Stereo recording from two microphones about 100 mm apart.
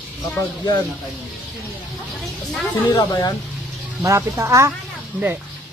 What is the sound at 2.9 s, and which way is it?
Speech, 45° left (ahead or behind).